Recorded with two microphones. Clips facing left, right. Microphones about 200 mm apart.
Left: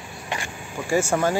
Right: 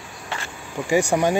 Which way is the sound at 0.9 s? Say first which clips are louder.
Right 2 dB; 15° right (ahead or behind).